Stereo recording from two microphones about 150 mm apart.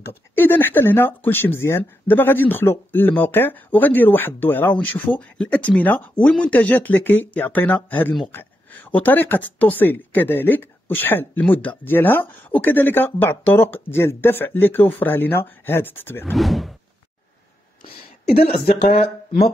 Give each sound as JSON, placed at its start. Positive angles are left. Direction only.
{"t": 0.1, "sound": "speech", "side_deg": 15}
{"t": 16.3, "sound": "speech", "side_deg": 0}
{"t": 18.9, "sound": "speech", "side_deg": 40}